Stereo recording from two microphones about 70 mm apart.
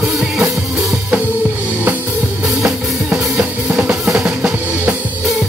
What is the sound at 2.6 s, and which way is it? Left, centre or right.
Music, centre.